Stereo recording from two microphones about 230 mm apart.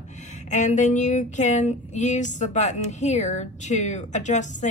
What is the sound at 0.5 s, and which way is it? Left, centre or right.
A woman's voice, left.